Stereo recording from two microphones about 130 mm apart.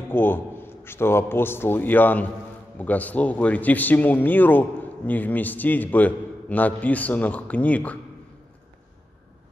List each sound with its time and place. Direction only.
0.1 s a man's voice: 15° left (ahead or behind)